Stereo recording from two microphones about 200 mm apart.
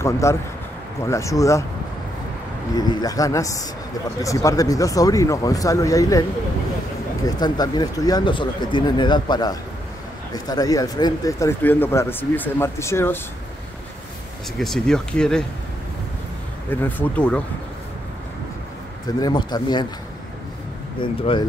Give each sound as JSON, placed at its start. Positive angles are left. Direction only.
{"t": 0.0, "sound": "speech", "side_deg": 15}
{"t": 2.7, "sound": "speech", "side_deg": 20}
{"t": 7.2, "sound": "speech", "side_deg": 20}
{"t": 14.6, "sound": "speech", "side_deg": 0}
{"t": 16.8, "sound": "speech", "side_deg": 10}
{"t": 19.0, "sound": "speech", "side_deg": 20}
{"t": 21.0, "sound": "speech", "side_deg": 25}